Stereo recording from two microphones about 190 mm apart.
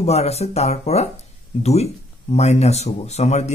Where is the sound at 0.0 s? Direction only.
35° left (ahead or behind).